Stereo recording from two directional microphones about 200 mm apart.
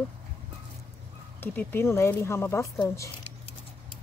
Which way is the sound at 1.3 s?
10° left (ahead or behind).